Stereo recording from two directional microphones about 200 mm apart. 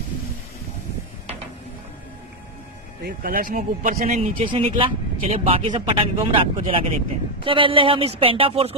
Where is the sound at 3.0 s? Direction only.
45° right (ahead or behind).